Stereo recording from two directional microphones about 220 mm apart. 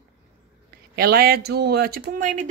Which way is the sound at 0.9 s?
45° right (ahead or behind).